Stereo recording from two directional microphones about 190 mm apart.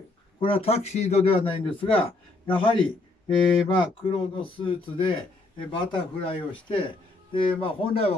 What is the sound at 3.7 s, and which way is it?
A man's voice, 25° left (ahead or behind).